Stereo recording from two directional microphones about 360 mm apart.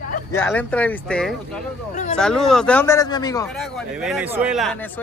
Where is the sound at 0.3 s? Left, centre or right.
Centre.